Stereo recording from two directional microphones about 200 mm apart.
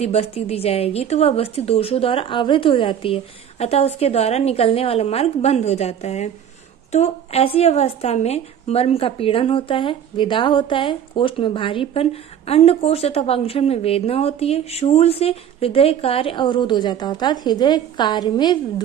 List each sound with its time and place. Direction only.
0.0 s a woman's voice: 30° left (ahead or behind)